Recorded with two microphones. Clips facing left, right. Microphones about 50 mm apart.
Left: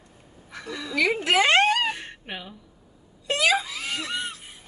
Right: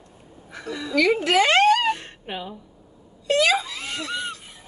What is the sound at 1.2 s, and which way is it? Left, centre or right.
Speech, left.